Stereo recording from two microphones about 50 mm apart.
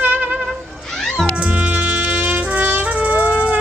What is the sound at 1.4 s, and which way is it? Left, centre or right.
Music, right.